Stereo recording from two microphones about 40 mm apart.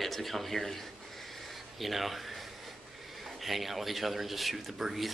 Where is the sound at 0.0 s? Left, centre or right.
Centre.